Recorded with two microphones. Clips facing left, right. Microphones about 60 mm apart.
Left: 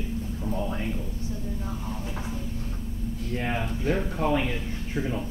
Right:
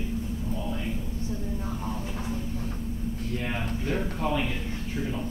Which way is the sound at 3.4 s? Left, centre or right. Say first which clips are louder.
Left 5 dB; left.